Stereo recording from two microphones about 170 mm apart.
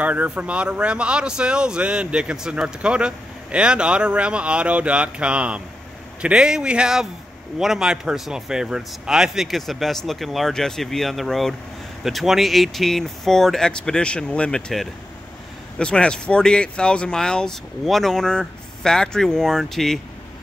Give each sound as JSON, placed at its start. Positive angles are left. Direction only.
{"t": 0.0, "sound": "speech", "side_deg": -10}